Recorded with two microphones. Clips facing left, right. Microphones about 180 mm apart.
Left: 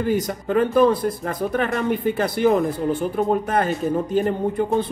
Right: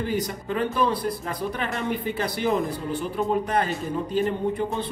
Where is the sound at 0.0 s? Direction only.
50° left (ahead or behind).